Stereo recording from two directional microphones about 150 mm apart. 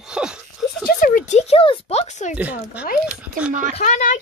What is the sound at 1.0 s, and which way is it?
Speech, 60° left (ahead or behind).